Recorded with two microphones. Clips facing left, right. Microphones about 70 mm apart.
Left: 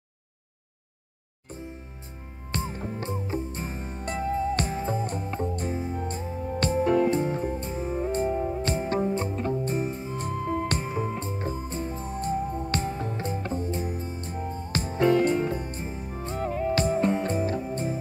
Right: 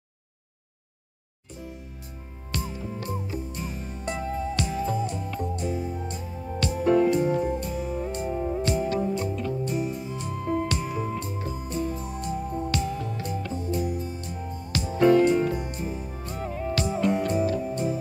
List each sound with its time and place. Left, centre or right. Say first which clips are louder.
2.5 s music: left 1 dB; left